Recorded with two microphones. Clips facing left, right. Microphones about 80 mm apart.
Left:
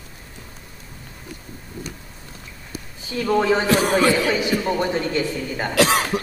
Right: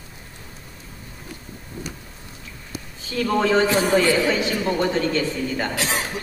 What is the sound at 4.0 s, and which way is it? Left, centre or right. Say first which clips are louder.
A man's voice: left 1 dB; centre.